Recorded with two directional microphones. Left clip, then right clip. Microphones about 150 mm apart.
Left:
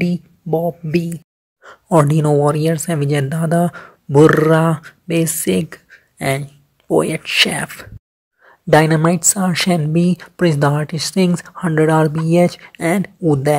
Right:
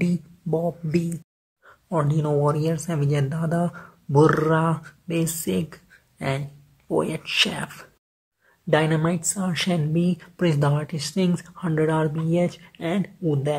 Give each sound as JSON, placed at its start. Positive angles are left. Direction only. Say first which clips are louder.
{"t": 0.0, "sound": "speech", "louder": "left 6 dB", "side_deg": 15}
{"t": 1.6, "sound": "a sound", "louder": "left 12 dB", "side_deg": 45}
{"t": 2.3, "sound": "speech", "louder": "left 7 dB", "side_deg": 30}